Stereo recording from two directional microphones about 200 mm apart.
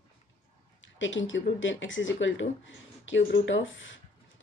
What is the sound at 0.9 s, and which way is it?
Speech, 70° left (ahead or behind).